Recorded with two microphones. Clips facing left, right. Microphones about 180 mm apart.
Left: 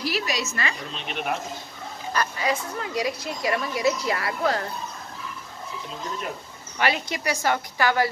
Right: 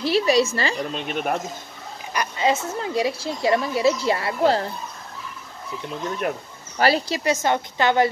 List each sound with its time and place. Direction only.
0.0 s a woman's voice: 30° right (ahead or behind)
0.9 s speech: 50° right (ahead or behind)
2.1 s a woman's voice: 25° right (ahead or behind)
6.8 s a woman's voice: 35° right (ahead or behind)
7.2 s a woman's voice: 20° right (ahead or behind)